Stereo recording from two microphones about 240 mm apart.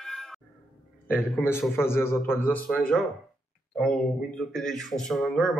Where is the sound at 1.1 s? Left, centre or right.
Centre.